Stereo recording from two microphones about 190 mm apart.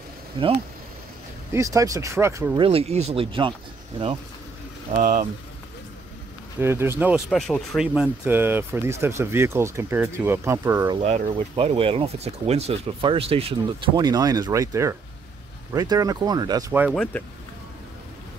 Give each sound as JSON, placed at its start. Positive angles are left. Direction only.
{"t": 0.3, "sound": "speech", "side_deg": -25}
{"t": 2.6, "sound": "speech", "side_deg": -30}
{"t": 4.9, "sound": "speech", "side_deg": -40}
{"t": 6.6, "sound": "speech", "side_deg": -10}
{"t": 7.2, "sound": "speech", "side_deg": 5}
{"t": 11.0, "sound": "speech", "side_deg": -35}
{"t": 16.9, "sound": "speech", "side_deg": 5}